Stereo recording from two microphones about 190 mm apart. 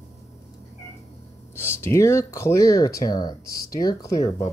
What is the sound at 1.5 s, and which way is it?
Speech, 10° left (ahead or behind).